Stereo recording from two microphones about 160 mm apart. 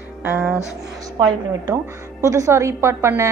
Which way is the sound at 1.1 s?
25° right (ahead or behind).